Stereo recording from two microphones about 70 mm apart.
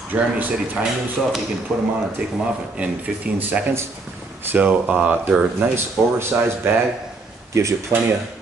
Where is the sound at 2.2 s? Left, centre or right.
Centre.